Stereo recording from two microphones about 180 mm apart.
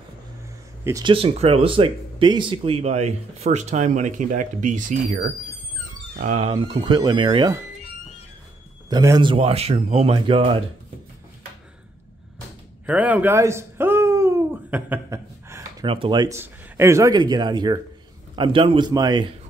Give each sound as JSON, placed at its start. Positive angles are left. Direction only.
{"t": 0.8, "sound": "speech", "side_deg": -20}
{"t": 1.1, "sound": "speech", "side_deg": -35}
{"t": 8.8, "sound": "speech", "side_deg": -20}
{"t": 12.8, "sound": "a sound", "side_deg": -10}
{"t": 15.8, "sound": "speech", "side_deg": -30}